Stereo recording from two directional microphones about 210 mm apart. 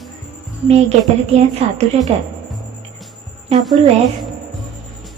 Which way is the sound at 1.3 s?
30° right (ahead or behind).